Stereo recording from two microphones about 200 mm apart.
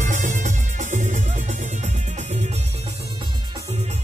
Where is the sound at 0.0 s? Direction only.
40° right (ahead or behind).